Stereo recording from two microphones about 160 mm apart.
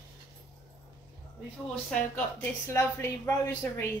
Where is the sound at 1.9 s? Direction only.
10° left (ahead or behind).